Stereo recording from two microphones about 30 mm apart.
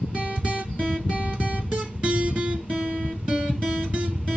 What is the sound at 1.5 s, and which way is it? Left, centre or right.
Guitar, right.